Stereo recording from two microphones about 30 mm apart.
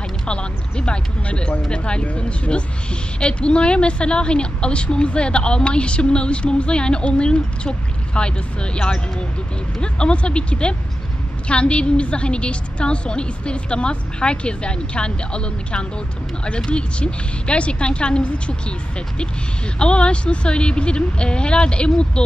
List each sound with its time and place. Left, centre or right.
0.3 s a sound: left
1.7 s a woman's voice: left
2.0 s a woman's voice: left
9.8 s a woman's voice: left
19.8 s a woman's voice: left